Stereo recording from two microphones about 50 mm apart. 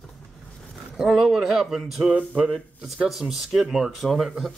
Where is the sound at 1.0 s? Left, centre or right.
Centre.